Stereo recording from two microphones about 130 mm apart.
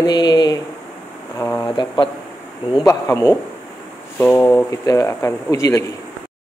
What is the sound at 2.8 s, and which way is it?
A man's voice, 25° left (ahead or behind).